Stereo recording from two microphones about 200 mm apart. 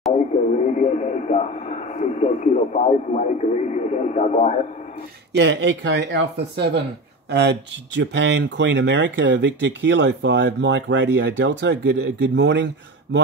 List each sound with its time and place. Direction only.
0.5 s speech: 35° left (ahead or behind)
5.3 s speech: 60° right (ahead or behind)